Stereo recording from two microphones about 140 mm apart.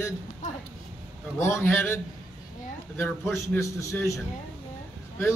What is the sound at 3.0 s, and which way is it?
A man's voice, 10° left (ahead or behind).